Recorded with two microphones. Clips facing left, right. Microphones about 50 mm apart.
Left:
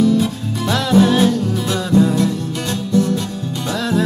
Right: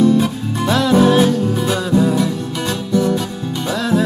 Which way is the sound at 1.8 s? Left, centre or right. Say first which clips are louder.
Left 3 dB; centre.